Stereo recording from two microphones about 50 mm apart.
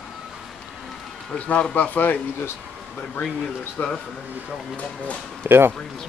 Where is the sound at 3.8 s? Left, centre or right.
Left.